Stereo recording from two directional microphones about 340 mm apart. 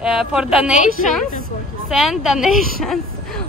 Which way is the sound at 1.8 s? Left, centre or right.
Centre.